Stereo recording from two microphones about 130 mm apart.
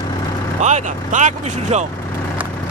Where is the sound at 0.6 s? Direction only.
65° right (ahead or behind).